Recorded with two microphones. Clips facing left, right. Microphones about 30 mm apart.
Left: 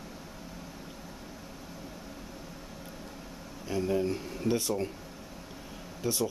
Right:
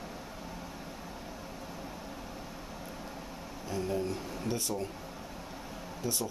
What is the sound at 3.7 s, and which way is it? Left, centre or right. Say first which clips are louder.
Speech: left 4 dB; centre.